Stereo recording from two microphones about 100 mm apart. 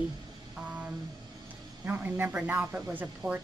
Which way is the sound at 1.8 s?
20° right (ahead or behind).